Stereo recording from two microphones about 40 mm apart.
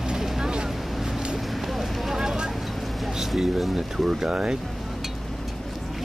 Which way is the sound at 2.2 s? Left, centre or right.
Centre.